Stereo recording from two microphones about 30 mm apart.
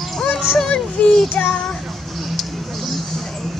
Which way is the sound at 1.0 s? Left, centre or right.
Left.